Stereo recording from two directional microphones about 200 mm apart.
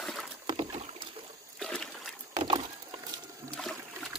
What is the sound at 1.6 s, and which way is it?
Toilet flush, 5° left (ahead or behind).